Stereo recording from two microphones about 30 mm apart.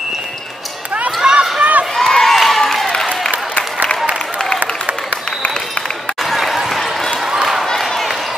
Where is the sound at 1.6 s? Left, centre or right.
Right.